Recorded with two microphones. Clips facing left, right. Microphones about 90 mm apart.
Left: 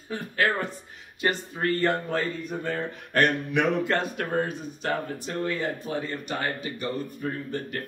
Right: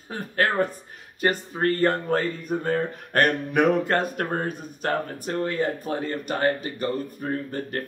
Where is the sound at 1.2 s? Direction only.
45° right (ahead or behind).